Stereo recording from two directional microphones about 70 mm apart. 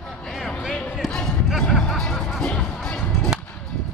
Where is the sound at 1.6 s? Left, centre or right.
Centre.